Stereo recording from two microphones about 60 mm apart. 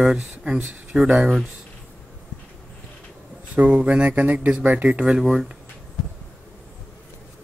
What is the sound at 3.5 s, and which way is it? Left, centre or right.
Speech, right.